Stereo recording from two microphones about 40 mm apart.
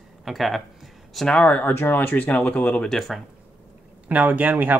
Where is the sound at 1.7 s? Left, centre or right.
Left.